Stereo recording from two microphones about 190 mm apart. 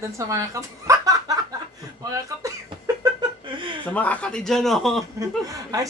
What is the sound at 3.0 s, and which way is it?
Chuckle, 25° right (ahead or behind).